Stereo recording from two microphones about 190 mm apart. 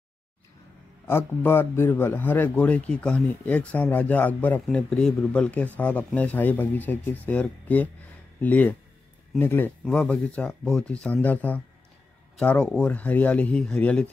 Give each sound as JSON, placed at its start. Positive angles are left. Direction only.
{"t": 1.0, "sound": "a man's voice", "side_deg": 10}